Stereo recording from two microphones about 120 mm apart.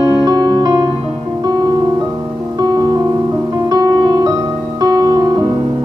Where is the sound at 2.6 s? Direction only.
30° right (ahead or behind).